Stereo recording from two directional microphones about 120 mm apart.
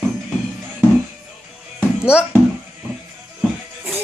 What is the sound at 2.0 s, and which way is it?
Speech, 10° right (ahead or behind).